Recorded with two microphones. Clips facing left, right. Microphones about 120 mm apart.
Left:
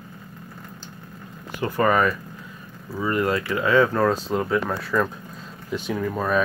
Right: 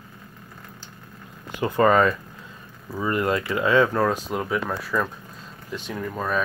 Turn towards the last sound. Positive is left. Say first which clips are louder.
# left 4 dB
turn(degrees=5)  # may be behind; listen again after turning